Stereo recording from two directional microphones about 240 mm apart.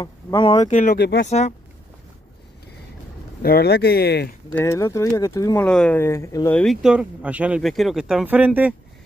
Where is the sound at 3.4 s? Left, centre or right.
Left.